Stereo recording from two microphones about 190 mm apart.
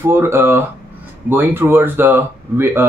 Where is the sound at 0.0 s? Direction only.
10° right (ahead or behind).